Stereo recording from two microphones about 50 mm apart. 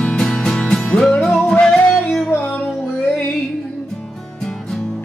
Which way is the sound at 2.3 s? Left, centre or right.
Left.